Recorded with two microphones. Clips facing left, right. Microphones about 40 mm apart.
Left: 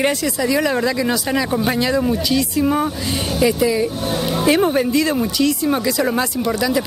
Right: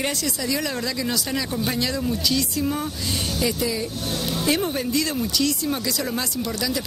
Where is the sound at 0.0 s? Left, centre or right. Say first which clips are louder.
Left 8 dB; centre.